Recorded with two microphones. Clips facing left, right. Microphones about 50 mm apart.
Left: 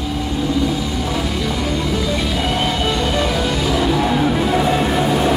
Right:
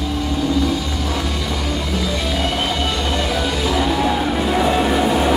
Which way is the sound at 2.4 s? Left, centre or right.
Centre.